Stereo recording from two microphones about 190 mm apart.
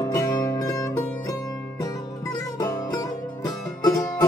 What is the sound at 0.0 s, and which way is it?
Music, 20° left (ahead or behind).